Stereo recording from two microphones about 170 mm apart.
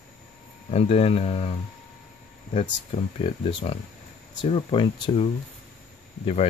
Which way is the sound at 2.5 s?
35° left (ahead or behind).